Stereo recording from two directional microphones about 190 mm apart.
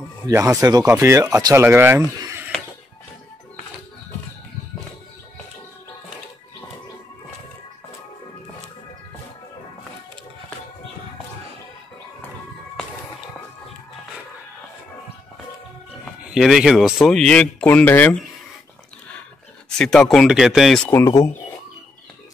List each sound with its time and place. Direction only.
0.3 s speech: 15° right (ahead or behind)
16.3 s speech: centre (ahead or behind)
19.8 s speech: 5° left (ahead or behind)